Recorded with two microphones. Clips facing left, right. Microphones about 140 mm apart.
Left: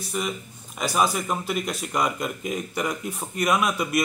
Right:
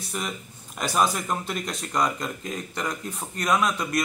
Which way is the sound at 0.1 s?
Centre (ahead or behind).